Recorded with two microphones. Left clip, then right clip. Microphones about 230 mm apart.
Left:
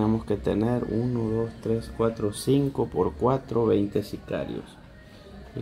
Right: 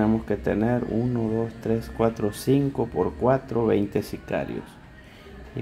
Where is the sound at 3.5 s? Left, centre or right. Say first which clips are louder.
Even; centre.